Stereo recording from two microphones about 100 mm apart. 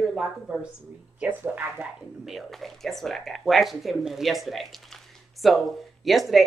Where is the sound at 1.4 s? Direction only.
20° right (ahead or behind).